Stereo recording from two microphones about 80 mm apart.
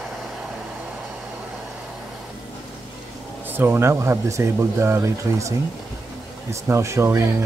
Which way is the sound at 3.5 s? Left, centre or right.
Right.